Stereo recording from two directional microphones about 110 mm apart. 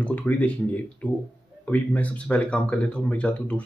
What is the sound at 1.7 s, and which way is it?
Speech, 15° left (ahead or behind).